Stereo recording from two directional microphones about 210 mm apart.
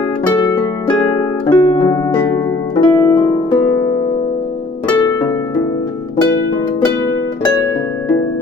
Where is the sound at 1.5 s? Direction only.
10° left (ahead or behind).